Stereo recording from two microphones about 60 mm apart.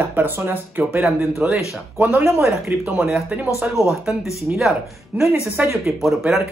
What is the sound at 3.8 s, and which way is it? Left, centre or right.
Speech, centre.